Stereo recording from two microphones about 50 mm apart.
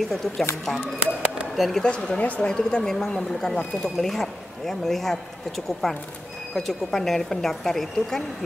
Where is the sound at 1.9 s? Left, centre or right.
Centre.